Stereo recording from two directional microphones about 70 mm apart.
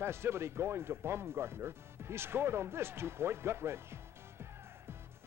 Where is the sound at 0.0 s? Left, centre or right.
Right.